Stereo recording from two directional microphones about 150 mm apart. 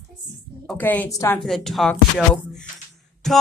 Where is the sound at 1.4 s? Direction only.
Centre (ahead or behind).